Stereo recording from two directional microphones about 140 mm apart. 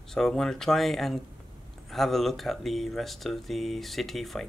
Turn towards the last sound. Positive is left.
turn(degrees=0)  # may be behind; listen again after turning